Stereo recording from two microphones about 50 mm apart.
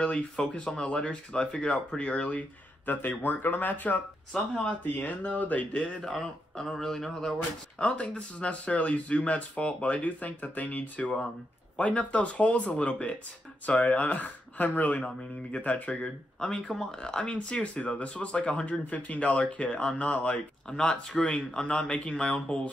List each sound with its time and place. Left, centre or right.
0.0 s speech: left
2.9 s speech: left
6.0 s speech: centre
7.8 s speech: left
16.6 s speech: centre
16.9 s speech: centre
20.6 s speech: centre